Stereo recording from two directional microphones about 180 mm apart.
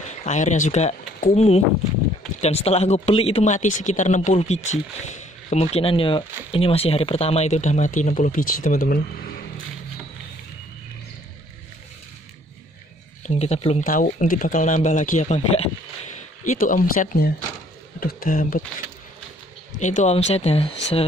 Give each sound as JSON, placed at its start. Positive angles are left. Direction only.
{"t": 0.0, "sound": "speech", "side_deg": 40}
{"t": 13.2, "sound": "speech", "side_deg": 35}
{"t": 13.8, "sound": "speech", "side_deg": 50}
{"t": 19.8, "sound": "speech", "side_deg": 40}